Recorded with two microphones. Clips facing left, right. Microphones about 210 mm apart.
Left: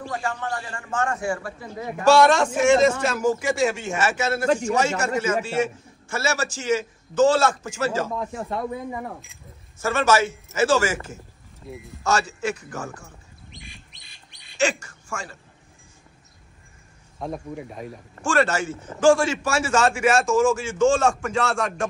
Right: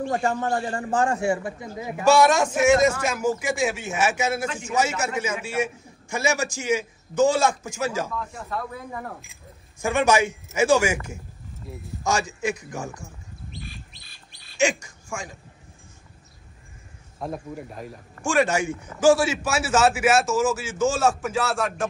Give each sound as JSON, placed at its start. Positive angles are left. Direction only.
{"t": 0.1, "sound": "a man's voice", "side_deg": -40}
{"t": 1.8, "sound": "a man's voice", "side_deg": -5}
{"t": 8.5, "sound": "speech", "side_deg": 25}
{"t": 8.9, "sound": "a man's voice", "side_deg": 5}
{"t": 9.8, "sound": "a man's voice", "side_deg": -15}
{"t": 12.0, "sound": "a man's voice", "side_deg": -10}
{"t": 13.5, "sound": "bird", "side_deg": 15}
{"t": 14.6, "sound": "speech", "side_deg": -10}
{"t": 17.2, "sound": "a man's voice", "side_deg": 0}